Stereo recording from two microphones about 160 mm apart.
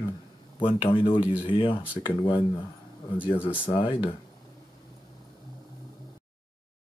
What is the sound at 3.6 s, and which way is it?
Speech, 30° left (ahead or behind).